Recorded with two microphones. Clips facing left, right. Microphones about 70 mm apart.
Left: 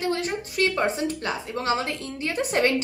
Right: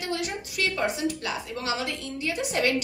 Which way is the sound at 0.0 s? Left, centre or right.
Left.